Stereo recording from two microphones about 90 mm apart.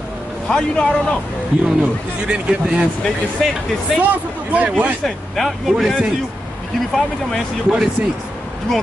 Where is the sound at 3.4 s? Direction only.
5° left (ahead or behind).